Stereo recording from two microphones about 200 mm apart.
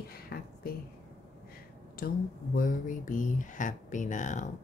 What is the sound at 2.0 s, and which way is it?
Speech, 45° left (ahead or behind).